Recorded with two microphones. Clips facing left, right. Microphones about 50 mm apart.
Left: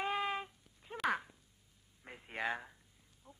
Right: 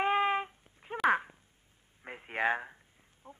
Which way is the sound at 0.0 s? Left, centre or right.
Right.